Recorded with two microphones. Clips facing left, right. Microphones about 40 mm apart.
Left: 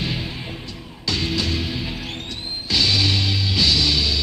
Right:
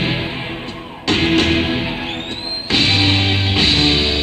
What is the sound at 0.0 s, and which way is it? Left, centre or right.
Music, right.